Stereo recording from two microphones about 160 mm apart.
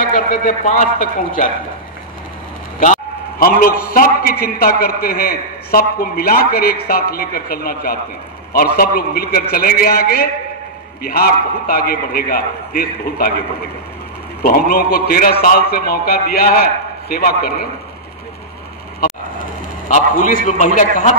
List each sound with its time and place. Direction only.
0.0 s a man's voice: 60° left (ahead or behind)
2.8 s a man's voice: 60° left (ahead or behind)
14.4 s a man's voice: 65° left (ahead or behind)
19.9 s a man's voice: 50° left (ahead or behind)